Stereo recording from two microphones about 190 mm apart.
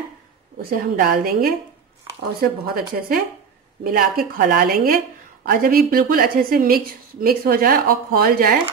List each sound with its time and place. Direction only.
0.6 s speech: 50° right (ahead or behind)